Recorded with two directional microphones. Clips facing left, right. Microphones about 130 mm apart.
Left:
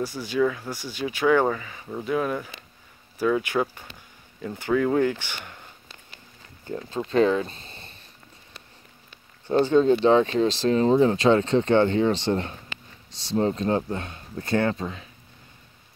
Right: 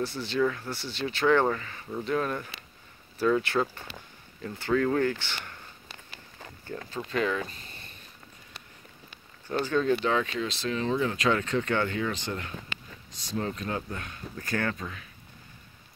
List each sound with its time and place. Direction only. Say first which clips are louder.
0.0 s speech: left 3 dB; 10° left (ahead or behind)
6.7 s speech: left 7 dB; 25° left (ahead or behind)
9.5 s speech: left 7 dB; 25° left (ahead or behind)